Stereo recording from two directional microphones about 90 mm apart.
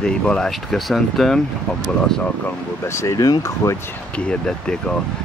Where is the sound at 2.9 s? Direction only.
30° left (ahead or behind).